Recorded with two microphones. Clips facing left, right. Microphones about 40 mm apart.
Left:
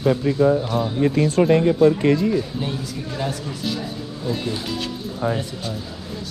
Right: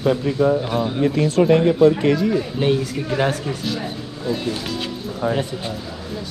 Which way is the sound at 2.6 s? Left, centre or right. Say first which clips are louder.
Right 8 dB; right.